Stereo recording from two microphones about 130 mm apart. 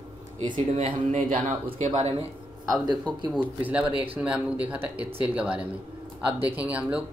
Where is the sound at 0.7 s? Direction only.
55° right (ahead or behind).